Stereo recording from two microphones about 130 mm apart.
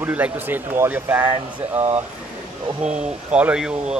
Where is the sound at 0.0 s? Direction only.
15° right (ahead or behind).